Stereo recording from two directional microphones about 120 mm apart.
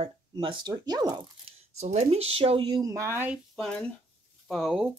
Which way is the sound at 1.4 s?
65° right (ahead or behind).